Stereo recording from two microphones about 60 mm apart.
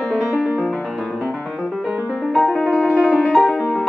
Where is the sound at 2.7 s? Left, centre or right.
Centre.